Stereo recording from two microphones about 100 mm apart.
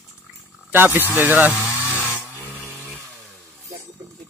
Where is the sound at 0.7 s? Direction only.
20° right (ahead or behind).